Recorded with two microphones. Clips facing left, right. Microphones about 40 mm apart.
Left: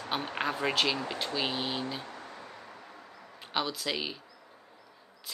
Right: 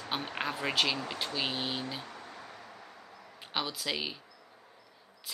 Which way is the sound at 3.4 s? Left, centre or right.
Centre.